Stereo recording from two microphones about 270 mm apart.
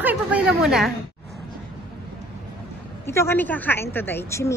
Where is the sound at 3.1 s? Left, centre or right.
Centre.